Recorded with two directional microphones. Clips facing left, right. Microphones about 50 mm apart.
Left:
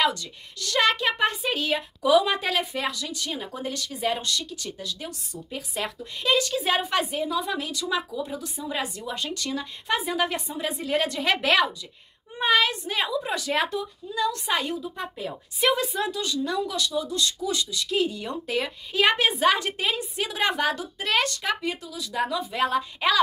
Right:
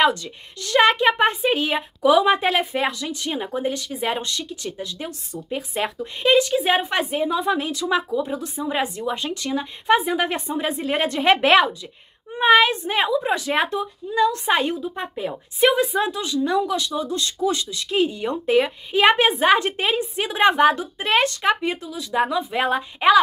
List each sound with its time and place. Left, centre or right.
0.0 s speech: right